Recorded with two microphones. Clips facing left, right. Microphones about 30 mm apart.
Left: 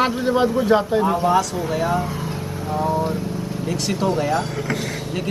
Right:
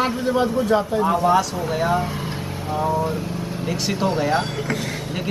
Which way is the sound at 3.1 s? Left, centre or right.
Right.